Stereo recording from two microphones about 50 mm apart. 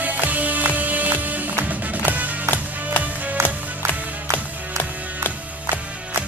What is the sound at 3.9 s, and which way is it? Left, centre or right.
Music, left.